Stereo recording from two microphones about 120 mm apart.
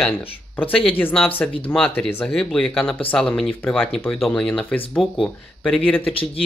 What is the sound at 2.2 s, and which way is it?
Speech, 5° left (ahead or behind).